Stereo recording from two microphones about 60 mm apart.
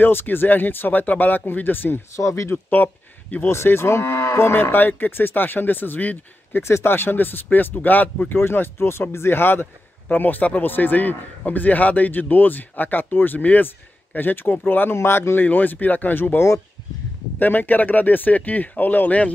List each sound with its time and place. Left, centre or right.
0.0 s speech: left
2.1 s speech: left
2.5 s speech: left
3.4 s speech: left
6.6 s speech: left
15.0 s speech: left
15.4 s speech: left